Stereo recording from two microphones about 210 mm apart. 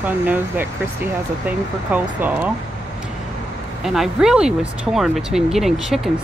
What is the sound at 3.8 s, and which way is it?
Speech, centre (ahead or behind).